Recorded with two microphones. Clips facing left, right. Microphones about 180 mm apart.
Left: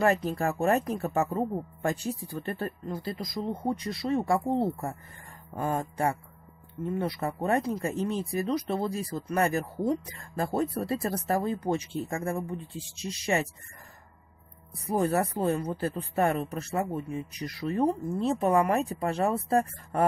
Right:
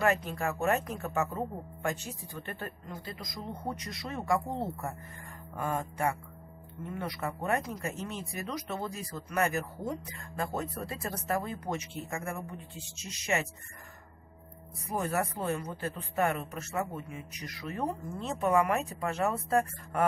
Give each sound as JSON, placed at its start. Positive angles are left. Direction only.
{"t": 0.0, "sound": "speech", "side_deg": 35}
{"t": 14.9, "sound": "speech", "side_deg": 35}